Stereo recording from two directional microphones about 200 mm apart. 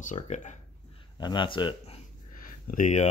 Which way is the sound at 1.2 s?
25° left (ahead or behind).